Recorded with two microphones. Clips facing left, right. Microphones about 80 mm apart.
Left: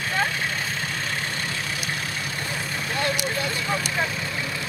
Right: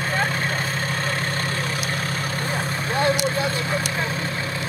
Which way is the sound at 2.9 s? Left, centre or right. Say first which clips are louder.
Right 5 dB; right.